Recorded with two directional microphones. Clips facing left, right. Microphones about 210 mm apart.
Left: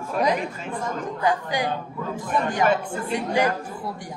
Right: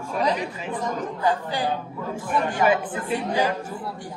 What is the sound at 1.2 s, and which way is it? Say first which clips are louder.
Speech: left 1 dB; 15° left (ahead or behind).